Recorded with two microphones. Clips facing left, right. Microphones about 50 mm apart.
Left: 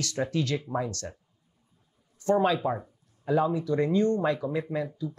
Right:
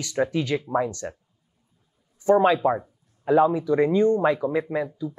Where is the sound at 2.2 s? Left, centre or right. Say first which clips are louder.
Right 6 dB; centre.